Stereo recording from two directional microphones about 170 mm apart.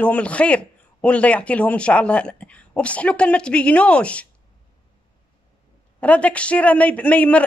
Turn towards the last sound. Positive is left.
turn(degrees=10)  # may be behind; listen again after turning